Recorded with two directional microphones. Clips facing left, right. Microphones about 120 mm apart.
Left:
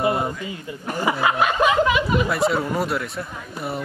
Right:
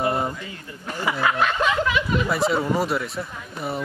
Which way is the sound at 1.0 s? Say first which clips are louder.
Left 2 dB; 20° left (ahead or behind).